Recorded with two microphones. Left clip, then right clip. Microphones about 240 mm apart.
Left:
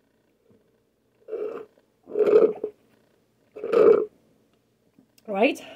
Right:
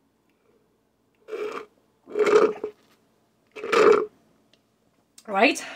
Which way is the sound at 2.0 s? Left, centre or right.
Right.